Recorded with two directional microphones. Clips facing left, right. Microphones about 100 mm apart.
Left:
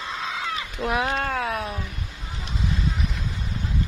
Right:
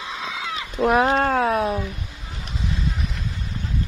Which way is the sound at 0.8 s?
45° right (ahead or behind).